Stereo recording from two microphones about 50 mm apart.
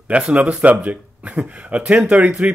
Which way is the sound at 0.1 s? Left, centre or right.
Right.